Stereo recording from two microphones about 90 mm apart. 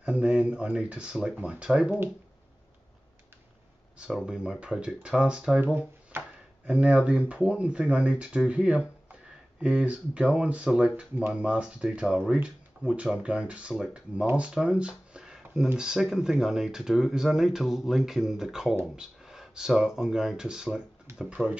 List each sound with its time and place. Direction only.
0.0 s speech: 10° right (ahead or behind)
4.3 s speech: 10° right (ahead or behind)
6.1 s speech: 25° right (ahead or behind)
6.7 s speech: 10° right (ahead or behind)
18.9 s a sound: 5° right (ahead or behind)
20.0 s speech: 5° right (ahead or behind)